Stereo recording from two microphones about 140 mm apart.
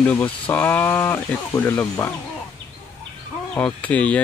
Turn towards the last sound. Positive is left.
turn(degrees=10)  # may be behind; listen again after turning